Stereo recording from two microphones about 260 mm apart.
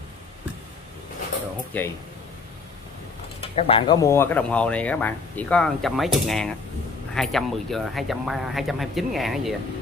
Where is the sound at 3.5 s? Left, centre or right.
Left.